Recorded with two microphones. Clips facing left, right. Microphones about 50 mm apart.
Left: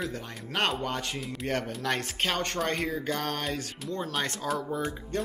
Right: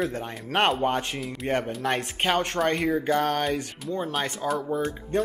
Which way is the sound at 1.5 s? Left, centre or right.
Right.